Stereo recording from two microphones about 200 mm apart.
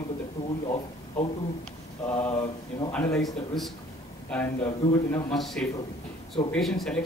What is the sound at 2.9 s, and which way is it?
A man's voice, 5° left (ahead or behind).